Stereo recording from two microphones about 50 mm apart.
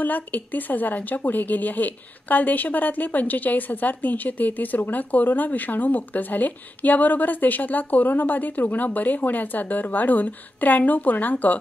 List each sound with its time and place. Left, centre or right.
0.0 s speech: left